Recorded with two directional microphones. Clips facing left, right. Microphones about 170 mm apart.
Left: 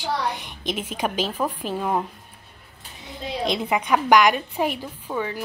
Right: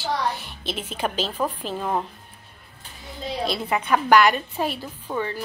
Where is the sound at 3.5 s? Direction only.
15° left (ahead or behind).